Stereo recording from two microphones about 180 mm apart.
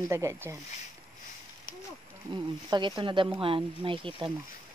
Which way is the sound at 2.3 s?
25° right (ahead or behind).